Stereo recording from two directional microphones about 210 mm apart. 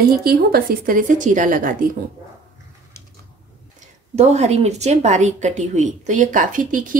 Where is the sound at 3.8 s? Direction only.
30° right (ahead or behind).